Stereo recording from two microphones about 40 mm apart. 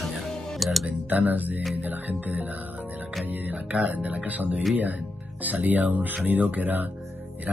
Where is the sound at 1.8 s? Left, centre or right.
Right.